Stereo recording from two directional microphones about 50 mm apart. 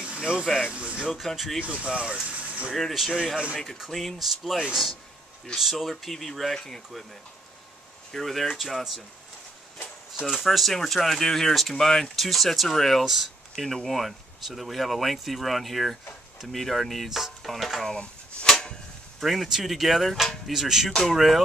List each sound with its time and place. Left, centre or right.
0.0 s a sound: centre
0.9 s speech: centre
1.6 s speech: centre
2.7 s speech: centre
8.1 s speech: centre
10.2 s speech: centre
13.6 s speech: centre
13.8 s speech: centre
17.9 s a sound: centre
19.1 s speech: centre